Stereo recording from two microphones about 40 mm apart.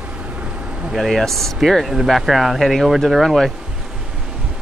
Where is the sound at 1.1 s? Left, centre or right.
Centre.